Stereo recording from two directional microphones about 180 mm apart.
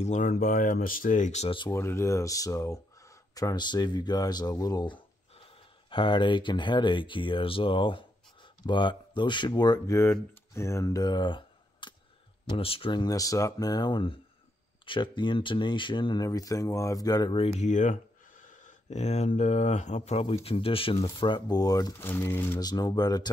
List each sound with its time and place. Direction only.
0.0 s speech: 45° left (ahead or behind)
1.7 s speech: 15° left (ahead or behind)